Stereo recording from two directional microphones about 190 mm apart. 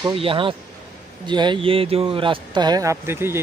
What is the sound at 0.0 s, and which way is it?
Speech, 25° right (ahead or behind).